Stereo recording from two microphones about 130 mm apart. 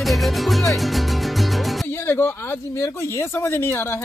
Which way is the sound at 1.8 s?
20° left (ahead or behind).